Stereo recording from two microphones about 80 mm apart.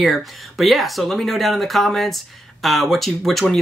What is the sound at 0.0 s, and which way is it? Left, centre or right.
Speech, centre.